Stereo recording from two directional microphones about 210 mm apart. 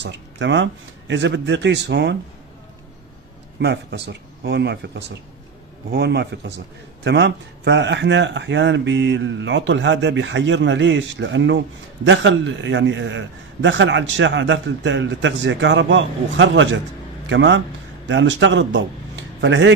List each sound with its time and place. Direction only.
0.0 s speech: 60° right (ahead or behind)
3.5 s a man's voice: 55° right (ahead or behind)